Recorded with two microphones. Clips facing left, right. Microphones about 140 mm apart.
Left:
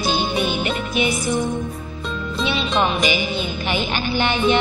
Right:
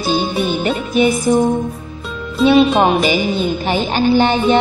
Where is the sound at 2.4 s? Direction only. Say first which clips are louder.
Right 11 dB; 50° right (ahead or behind).